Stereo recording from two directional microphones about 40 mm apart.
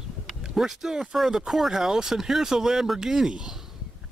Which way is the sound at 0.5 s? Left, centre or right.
Centre.